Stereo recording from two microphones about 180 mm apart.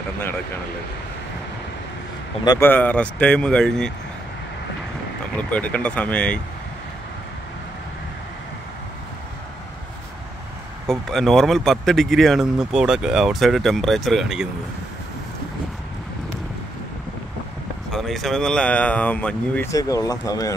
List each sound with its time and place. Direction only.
2.4 s speech: 20° left (ahead or behind)
2.7 s speech: 10° left (ahead or behind)
5.5 s speech: 5° left (ahead or behind)
10.9 s speech: centre (ahead or behind)
17.9 s speech: centre (ahead or behind); by 20.5 s 20° left (ahead or behind)